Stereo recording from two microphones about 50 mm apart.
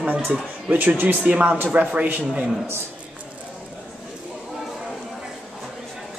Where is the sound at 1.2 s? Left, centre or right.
Right.